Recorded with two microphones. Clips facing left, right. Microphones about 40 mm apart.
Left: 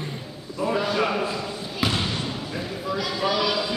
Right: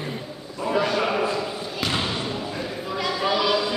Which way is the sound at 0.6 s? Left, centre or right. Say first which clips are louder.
Right 1 dB; centre.